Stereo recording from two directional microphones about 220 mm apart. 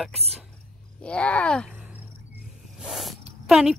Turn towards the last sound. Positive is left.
turn(degrees=0)  # may be behind; listen again after turning